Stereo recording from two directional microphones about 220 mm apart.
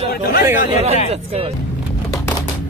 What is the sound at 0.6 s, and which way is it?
Speech, 30° right (ahead or behind).